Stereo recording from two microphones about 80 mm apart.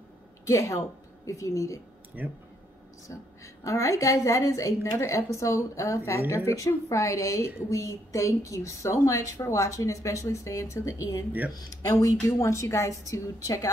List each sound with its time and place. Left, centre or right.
0.5 s a woman's voice: left
3.1 s a woman's voice: left